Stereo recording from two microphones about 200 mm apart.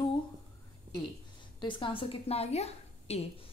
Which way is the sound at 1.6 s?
25° left (ahead or behind).